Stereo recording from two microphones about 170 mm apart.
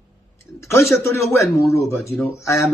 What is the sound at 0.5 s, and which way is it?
Speech, 15° left (ahead or behind).